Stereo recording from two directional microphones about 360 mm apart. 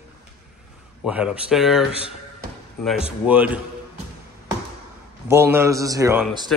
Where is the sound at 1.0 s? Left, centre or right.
Centre.